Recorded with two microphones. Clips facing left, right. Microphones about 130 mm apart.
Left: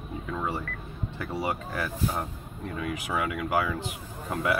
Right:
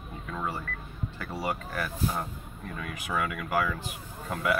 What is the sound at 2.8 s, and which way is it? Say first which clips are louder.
Speech: left 2 dB; 20° left (ahead or behind).